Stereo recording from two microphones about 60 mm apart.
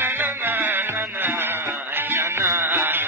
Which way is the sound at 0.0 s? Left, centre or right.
Right.